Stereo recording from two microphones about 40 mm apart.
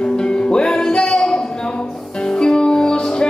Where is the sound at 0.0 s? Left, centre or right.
Centre.